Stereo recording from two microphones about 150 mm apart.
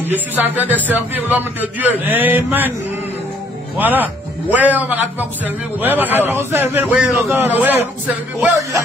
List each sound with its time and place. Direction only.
0.0 s a man's voice: 10° right (ahead or behind)
3.7 s a man's voice: 10° right (ahead or behind)